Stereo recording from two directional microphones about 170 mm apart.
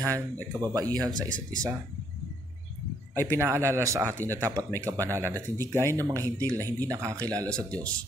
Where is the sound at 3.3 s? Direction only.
15° right (ahead or behind).